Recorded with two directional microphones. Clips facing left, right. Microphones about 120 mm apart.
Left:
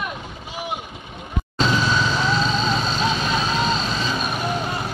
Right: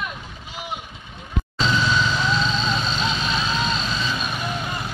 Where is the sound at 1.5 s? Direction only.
50° left (ahead or behind).